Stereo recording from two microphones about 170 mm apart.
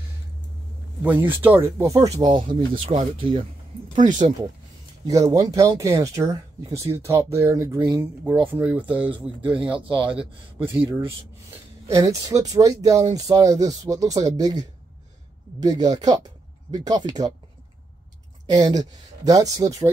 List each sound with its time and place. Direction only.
1.4 s speech: 15° right (ahead or behind)
2.1 s speech: 30° right (ahead or behind)
4.0 s speech: 45° right (ahead or behind)
5.0 s speech: 20° right (ahead or behind)
8.9 s speech: 30° right (ahead or behind)
11.9 s speech: 20° right (ahead or behind)
18.5 s speech: 20° right (ahead or behind)